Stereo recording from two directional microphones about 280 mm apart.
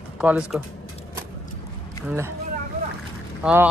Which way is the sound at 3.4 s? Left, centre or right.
Centre.